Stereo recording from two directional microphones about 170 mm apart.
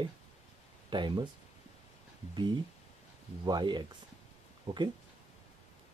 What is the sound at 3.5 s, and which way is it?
Speech, 25° right (ahead or behind).